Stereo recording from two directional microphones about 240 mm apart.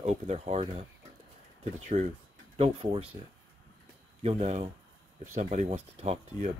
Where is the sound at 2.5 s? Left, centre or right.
Right.